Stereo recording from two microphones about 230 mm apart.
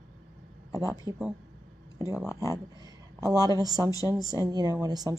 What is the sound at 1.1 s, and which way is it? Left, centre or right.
Speech, centre.